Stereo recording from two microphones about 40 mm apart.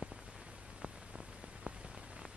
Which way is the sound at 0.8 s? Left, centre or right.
Centre.